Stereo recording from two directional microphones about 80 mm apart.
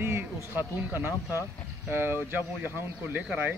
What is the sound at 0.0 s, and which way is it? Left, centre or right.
Speech, right.